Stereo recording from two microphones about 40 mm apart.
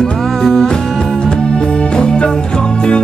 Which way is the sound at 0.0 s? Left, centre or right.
Centre.